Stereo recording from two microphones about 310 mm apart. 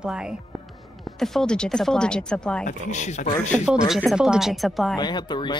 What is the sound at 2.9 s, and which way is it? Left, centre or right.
Speech, left.